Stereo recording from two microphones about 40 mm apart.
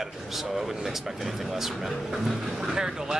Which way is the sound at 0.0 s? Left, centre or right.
Centre.